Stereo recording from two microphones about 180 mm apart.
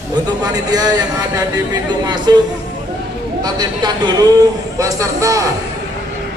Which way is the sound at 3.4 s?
25° right (ahead or behind).